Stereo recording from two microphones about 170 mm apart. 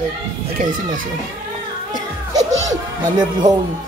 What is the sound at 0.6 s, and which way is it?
Speech, 50° right (ahead or behind).